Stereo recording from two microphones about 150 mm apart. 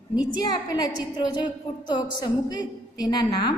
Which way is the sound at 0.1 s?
25° left (ahead or behind).